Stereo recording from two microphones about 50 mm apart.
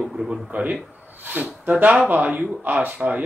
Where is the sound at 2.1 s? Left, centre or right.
Right.